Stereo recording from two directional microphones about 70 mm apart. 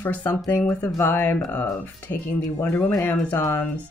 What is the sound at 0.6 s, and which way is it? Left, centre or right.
Speech, left.